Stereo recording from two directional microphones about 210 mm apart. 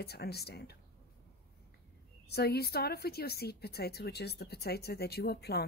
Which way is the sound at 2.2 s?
50° left (ahead or behind).